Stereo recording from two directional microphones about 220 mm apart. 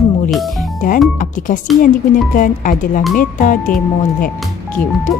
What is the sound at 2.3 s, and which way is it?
Speech, 40° left (ahead or behind).